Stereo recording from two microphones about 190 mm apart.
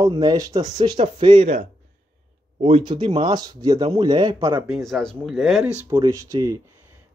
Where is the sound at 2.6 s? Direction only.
30° right (ahead or behind).